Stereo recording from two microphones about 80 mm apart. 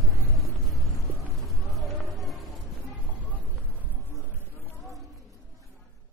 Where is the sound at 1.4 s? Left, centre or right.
Centre.